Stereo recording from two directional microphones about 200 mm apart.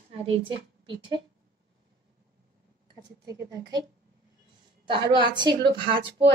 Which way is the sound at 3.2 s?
20° right (ahead or behind).